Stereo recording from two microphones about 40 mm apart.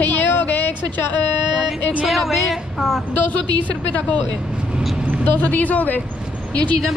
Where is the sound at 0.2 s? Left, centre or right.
Left.